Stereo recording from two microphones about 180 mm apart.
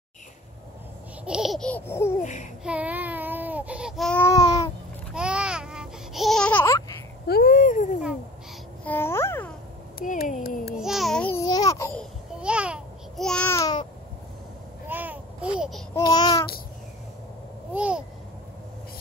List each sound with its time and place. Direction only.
1.2 s laughter: 5° right (ahead or behind)
1.9 s babbling: 15° left (ahead or behind)
2.6 s baby cry: 5° right (ahead or behind); by 4.6 s 20° left (ahead or behind)
5.1 s babbling: 5° right (ahead or behind); by 6.8 s 15° left (ahead or behind)
7.2 s a sound: 55° left (ahead or behind)
8.8 s babbling: 10° left (ahead or behind)
9.9 s a sound: 50° left (ahead or behind)
10.8 s babbling: centre (ahead or behind)
11.4 s babbling: 20° left (ahead or behind)
12.4 s babbling: 5° right (ahead or behind); by 13.8 s 20° left (ahead or behind)
14.9 s babbling: 10° right (ahead or behind)
15.9 s babbling: 20° left (ahead or behind)
17.7 s babbling: 5° right (ahead or behind)